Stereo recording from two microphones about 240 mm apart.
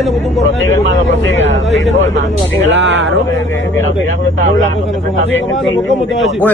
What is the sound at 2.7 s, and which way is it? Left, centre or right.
Speech, right.